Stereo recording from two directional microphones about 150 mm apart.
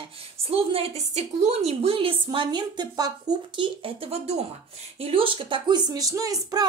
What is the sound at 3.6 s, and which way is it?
Speech, 40° right (ahead or behind).